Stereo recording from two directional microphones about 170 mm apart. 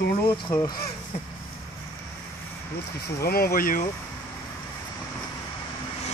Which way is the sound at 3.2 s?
65° left (ahead or behind).